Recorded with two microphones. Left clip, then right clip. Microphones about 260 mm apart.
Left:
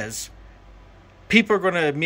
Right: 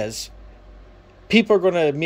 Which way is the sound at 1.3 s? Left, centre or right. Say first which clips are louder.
Right 2 dB; centre.